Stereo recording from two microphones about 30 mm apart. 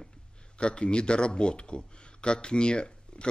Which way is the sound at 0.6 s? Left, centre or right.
Left.